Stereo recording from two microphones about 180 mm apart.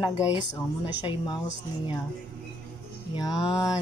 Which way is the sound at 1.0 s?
25° left (ahead or behind).